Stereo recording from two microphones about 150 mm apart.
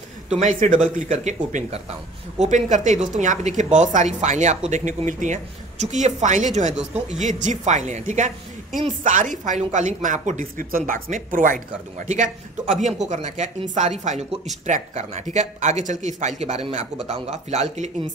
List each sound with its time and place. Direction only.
0.4 s speech: 60° right (ahead or behind)